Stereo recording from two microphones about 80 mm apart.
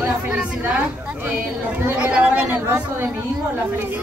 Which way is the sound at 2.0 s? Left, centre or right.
Centre.